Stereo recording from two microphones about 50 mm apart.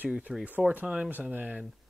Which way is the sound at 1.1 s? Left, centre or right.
Right.